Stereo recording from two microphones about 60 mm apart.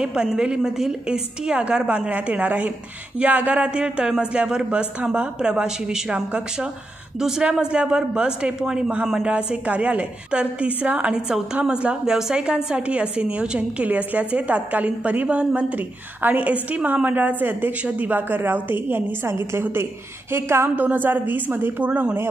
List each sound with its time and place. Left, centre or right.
0.0 s a woman's voice: centre
9.2 s a woman's voice: right
20.7 s a woman's voice: right
21.8 s a woman's voice: right